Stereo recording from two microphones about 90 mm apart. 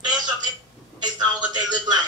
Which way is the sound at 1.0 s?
50° right (ahead or behind).